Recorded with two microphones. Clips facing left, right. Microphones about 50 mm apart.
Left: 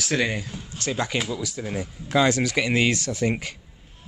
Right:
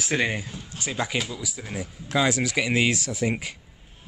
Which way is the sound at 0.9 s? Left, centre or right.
Centre.